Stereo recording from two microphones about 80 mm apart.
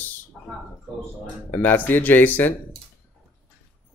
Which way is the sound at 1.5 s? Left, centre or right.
Left.